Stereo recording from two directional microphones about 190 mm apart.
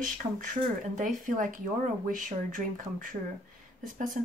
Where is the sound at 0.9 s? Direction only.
40° right (ahead or behind).